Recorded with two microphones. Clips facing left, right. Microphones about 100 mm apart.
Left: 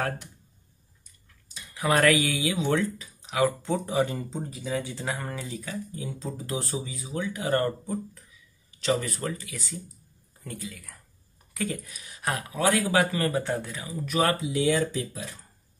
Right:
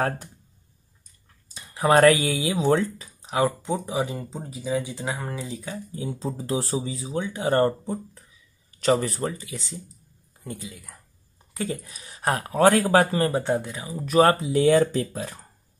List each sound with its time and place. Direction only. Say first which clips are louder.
1.5 s speech: right 6 dB; 35° right (ahead or behind)
3.6 s speech: even; 15° right (ahead or behind)
5.6 s speech: right 2 dB; 25° right (ahead or behind)
14.0 s speech: right 7 dB; 40° right (ahead or behind)